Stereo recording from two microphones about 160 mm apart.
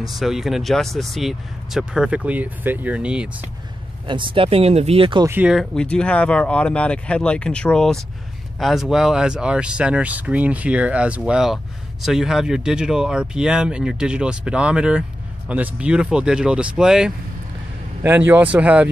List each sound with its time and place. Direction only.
0.0 s speech: centre (ahead or behind)
4.1 s speech: 30° right (ahead or behind)
5.2 s speech: 15° right (ahead or behind)
5.5 s speech: centre (ahead or behind)